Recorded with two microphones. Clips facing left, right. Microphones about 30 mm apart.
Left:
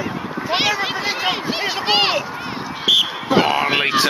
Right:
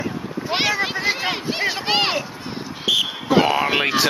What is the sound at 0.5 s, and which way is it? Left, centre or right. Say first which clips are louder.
Speech: left 1 dB; centre.